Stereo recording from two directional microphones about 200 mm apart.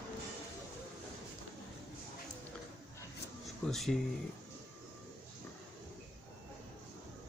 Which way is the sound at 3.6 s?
Centre (ahead or behind).